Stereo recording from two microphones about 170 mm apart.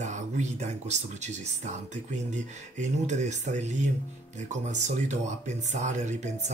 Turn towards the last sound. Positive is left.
turn(degrees=-45)  # may be behind; listen again after turning